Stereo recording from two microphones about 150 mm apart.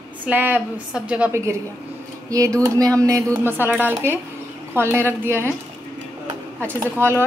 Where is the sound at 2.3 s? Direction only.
20° right (ahead or behind).